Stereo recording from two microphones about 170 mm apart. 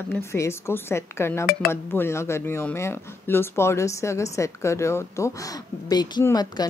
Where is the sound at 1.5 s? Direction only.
65° left (ahead or behind).